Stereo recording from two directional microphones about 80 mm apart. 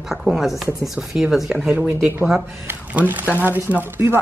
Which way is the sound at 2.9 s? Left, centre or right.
Right.